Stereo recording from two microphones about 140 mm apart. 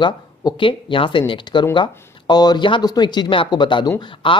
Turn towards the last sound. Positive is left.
turn(degrees=35)  # may be behind; listen again after turning